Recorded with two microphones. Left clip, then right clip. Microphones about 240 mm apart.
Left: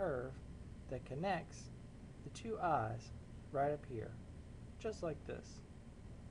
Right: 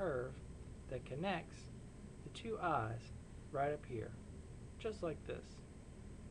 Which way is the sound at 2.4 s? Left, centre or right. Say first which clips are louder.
Left 2 dB; centre.